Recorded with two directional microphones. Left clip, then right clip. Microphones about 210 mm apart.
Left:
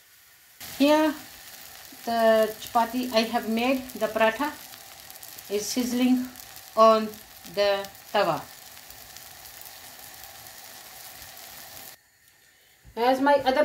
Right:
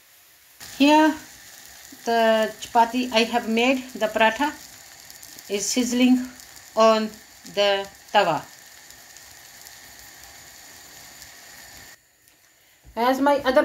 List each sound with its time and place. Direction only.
0.7 s speech: 5° right (ahead or behind)
5.5 s speech: 10° right (ahead or behind)
6.7 s frying: 10° right (ahead or behind)
7.5 s speech: 10° right (ahead or behind)
12.9 s a woman's voice: 40° right (ahead or behind)